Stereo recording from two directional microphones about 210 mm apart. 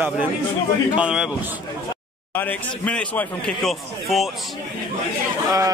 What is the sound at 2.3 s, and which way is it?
A man's voice, 10° left (ahead or behind).